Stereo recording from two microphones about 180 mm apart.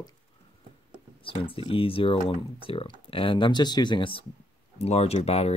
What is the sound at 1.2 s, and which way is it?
Speech, 30° left (ahead or behind).